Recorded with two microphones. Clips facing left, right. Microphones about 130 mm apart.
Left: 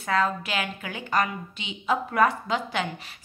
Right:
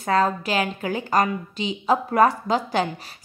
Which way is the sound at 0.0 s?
35° right (ahead or behind).